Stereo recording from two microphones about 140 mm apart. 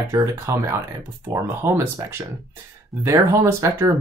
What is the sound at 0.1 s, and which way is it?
Speech, 20° right (ahead or behind).